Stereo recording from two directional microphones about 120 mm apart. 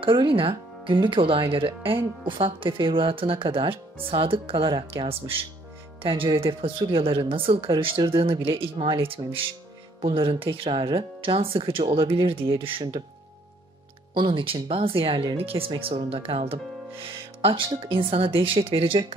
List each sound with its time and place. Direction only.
0.0 s speech: 45° right (ahead or behind)
14.1 s speech: 45° right (ahead or behind)